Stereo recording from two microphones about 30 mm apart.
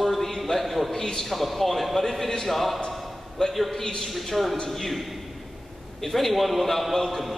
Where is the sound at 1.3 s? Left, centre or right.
Centre.